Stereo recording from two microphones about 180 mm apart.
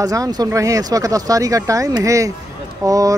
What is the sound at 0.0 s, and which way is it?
Speech, 20° right (ahead or behind).